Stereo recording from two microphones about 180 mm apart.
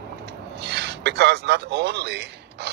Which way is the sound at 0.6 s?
70° right (ahead or behind).